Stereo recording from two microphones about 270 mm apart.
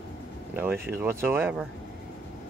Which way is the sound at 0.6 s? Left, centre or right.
Centre.